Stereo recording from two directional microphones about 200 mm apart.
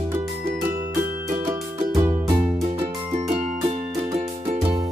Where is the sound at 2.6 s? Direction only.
30° right (ahead or behind).